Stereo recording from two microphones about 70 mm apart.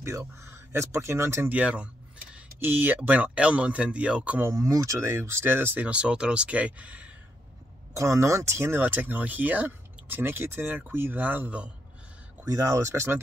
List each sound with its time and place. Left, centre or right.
0.0 s speech: right
1.5 s speech: centre
3.0 s speech: centre
4.4 s speech: right
5.8 s speech: centre
7.9 s speech: right
8.8 s speech: right
12.4 s speech: right